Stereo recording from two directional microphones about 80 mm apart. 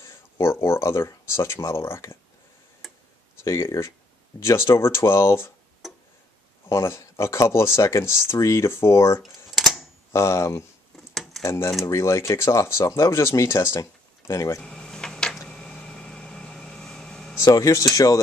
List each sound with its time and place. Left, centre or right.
0.0 s speech: left
3.4 s speech: left
5.8 s tick-tock: centre
6.7 s speech: left
9.2 s camera: centre
10.1 s speech: left
11.0 s keys jangling: centre
11.4 s speech: left
14.6 s a sound: centre
17.5 s speech: left